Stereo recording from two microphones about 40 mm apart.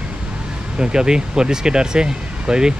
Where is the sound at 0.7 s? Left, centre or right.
Centre.